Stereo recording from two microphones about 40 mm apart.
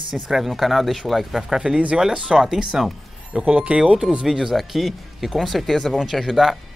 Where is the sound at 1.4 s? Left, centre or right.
Right.